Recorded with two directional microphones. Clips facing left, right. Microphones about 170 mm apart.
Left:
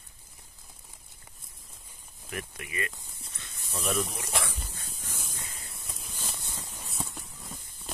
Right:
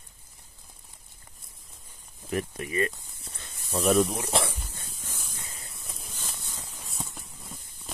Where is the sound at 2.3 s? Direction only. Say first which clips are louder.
Right 9 dB; 35° right (ahead or behind).